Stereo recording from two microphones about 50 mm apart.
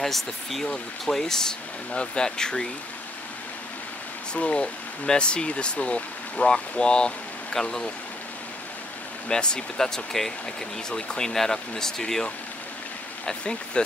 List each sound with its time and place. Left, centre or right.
0.0 s speech: centre
4.3 s speech: left
9.3 s speech: centre